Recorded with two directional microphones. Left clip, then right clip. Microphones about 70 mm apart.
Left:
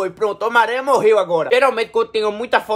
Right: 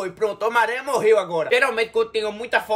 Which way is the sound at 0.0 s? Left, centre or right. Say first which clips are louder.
Left 3 dB; left.